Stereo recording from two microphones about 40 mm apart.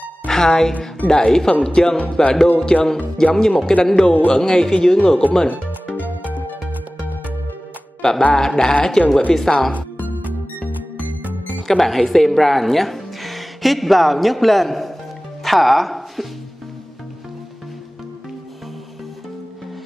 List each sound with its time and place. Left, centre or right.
0.3 s a woman's voice: centre
5.9 s music: right
8.0 s speech: centre
11.6 s speech: centre